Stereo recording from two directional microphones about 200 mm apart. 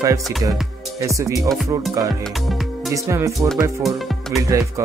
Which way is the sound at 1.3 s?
Centre (ahead or behind).